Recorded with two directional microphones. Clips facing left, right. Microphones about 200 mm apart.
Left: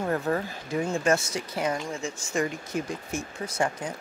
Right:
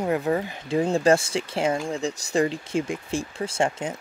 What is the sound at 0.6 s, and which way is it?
Speech, 30° right (ahead or behind).